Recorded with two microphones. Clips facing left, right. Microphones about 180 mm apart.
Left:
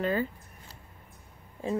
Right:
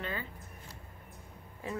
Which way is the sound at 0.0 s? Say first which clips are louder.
Left 11 dB; 40° left (ahead or behind).